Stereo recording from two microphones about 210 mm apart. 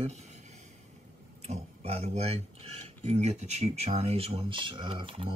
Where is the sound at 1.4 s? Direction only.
30° right (ahead or behind).